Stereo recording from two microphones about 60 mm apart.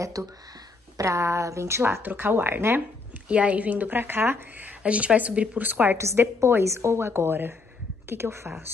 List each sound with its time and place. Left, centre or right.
0.0 s a woman's voice: right
2.0 s speech: right
3.3 s speech: right
4.8 s speech: right
5.7 s speech: right
5.9 s a woman's voice: right